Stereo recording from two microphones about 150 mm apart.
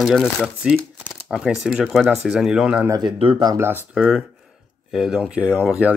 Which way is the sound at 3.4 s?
20° right (ahead or behind).